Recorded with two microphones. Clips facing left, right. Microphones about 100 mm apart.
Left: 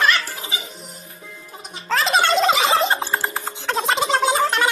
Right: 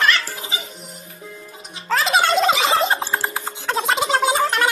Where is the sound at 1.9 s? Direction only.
Centre (ahead or behind).